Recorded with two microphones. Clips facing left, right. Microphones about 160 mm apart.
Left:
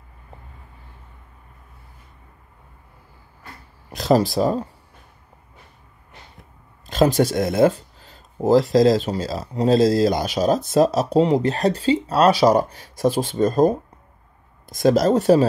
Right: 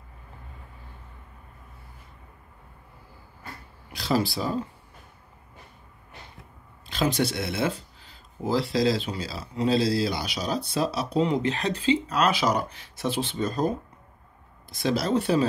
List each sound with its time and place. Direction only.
3.9 s speech: 45° left (ahead or behind)
6.9 s speech: 40° left (ahead or behind)